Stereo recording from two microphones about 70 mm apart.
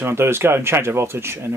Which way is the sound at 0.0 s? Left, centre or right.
Right.